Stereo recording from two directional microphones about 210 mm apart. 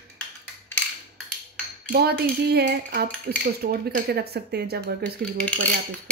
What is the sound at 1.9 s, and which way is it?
Speech, 50° right (ahead or behind).